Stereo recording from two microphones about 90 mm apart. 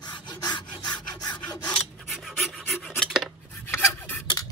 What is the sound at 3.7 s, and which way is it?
Filing, 25° left (ahead or behind).